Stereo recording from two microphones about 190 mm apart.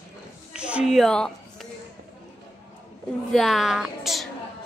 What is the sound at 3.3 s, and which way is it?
Speech, centre (ahead or behind).